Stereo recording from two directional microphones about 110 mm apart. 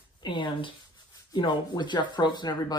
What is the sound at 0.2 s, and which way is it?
A woman's voice, 45° left (ahead or behind).